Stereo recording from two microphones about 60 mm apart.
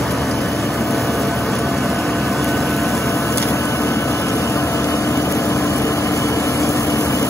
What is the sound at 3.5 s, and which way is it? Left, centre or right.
Vehicle, left.